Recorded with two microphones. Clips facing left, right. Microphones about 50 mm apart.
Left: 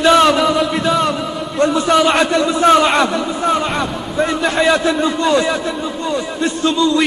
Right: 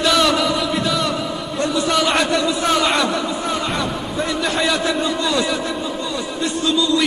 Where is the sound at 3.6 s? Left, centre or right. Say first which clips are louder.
Left 3 dB; centre.